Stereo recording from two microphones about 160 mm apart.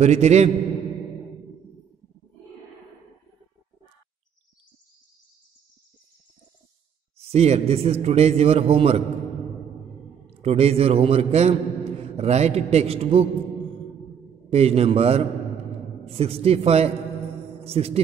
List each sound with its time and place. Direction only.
0.0 s a man's voice: 45° right (ahead or behind)
7.2 s a man's voice: 40° right (ahead or behind)
10.4 s a man's voice: 40° right (ahead or behind)
14.5 s a man's voice: 40° right (ahead or behind)